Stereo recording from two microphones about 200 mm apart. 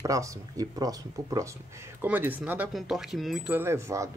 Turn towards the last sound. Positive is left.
turn(degrees=-15)  # may be behind; listen again after turning